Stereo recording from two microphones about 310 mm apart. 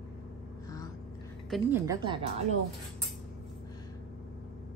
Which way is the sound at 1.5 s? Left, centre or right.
Centre.